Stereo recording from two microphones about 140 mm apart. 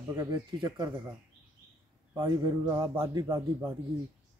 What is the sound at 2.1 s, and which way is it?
A man's voice, 30° right (ahead or behind).